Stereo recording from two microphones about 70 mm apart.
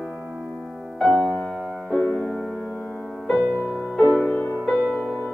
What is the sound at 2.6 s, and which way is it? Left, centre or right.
Music, left.